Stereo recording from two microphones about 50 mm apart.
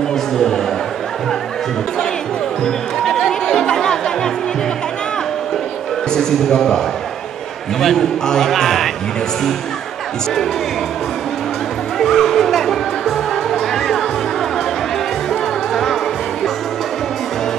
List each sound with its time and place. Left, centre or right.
0.1 s a sound: centre
2.6 s music: centre
6.1 s a man's voice: centre
7.8 s a man's voice: centre
12.0 s music: centre
15.7 s music: centre